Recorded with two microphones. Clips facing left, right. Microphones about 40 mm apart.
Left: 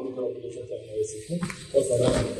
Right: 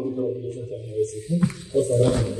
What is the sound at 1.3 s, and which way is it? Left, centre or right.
Speech, left.